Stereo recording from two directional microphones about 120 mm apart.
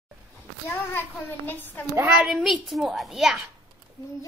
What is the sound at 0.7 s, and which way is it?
A child's voice, 20° left (ahead or behind).